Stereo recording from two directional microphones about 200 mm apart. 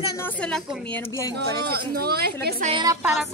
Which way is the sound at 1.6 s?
50° right (ahead or behind).